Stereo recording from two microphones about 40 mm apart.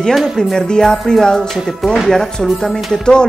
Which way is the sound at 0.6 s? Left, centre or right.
Centre.